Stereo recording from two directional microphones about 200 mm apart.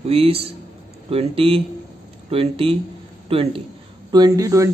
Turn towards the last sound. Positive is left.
turn(degrees=-15)  # may be behind; listen again after turning